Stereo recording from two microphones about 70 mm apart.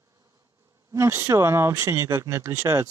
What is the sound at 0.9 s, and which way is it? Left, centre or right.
Speech, right.